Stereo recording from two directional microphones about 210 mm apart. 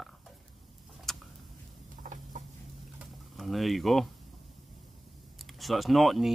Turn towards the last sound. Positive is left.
turn(degrees=0)  # may be behind; listen again after turning